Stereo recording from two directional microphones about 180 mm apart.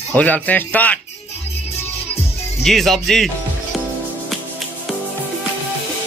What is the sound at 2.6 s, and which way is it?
Speech, centre (ahead or behind).